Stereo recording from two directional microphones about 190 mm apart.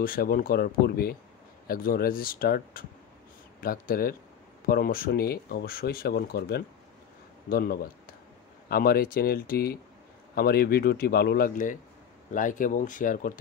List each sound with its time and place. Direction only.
0.0 s speech: 50° left (ahead or behind)